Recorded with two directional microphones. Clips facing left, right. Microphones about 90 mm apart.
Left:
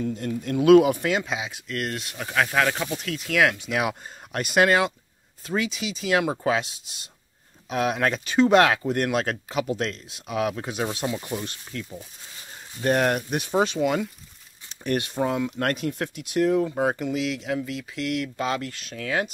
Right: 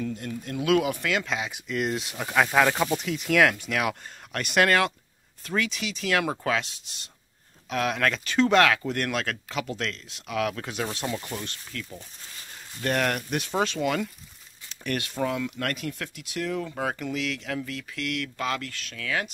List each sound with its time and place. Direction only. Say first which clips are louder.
0.2 s speech: left 7 dB; 40° left (ahead or behind)
1.2 s speech: even; 10° left (ahead or behind)
1.5 s speech: right 2 dB; 10° right (ahead or behind)
3.3 s speech: right 1 dB; 5° left (ahead or behind)
3.6 s speech: left 2 dB; 20° left (ahead or behind)
7.7 s speech: left 2 dB; 20° left (ahead or behind)
9.5 s speech: left 5 dB; 15° left (ahead or behind)
11.7 s speech: left 3 dB; 25° left (ahead or behind)
17.9 s speech: left 4 dB; 25° left (ahead or behind)